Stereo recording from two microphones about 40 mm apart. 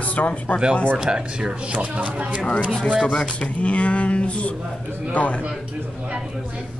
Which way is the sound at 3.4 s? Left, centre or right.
Left.